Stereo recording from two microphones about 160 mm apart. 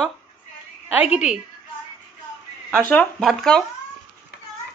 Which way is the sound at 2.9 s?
5° left (ahead or behind).